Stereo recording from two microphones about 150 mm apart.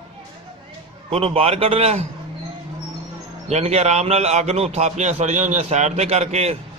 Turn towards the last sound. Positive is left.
turn(degrees=-45)  # may be behind; listen again after turning